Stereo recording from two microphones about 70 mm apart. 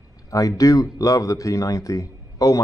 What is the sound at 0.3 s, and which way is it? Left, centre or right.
Speech, left.